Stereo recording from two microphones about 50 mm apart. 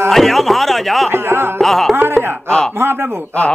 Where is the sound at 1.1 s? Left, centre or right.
Right.